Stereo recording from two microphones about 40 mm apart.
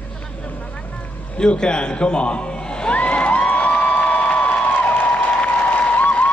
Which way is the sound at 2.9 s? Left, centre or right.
Left.